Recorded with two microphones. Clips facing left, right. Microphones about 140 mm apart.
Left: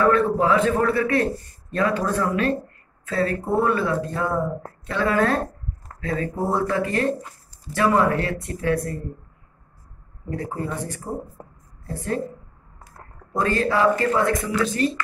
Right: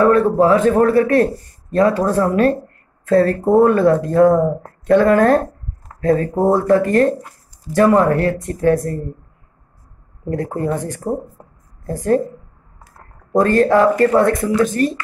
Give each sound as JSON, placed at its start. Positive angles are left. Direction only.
{"t": 0.0, "sound": "a man's voice", "side_deg": -40}
{"t": 10.3, "sound": "a woman's voice", "side_deg": -50}
{"t": 13.4, "sound": "speech", "side_deg": -50}